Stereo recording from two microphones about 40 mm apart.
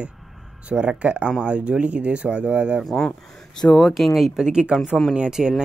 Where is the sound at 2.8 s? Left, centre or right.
Centre.